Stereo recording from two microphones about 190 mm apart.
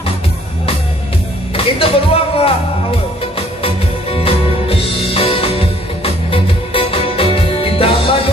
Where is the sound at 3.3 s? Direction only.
30° left (ahead or behind).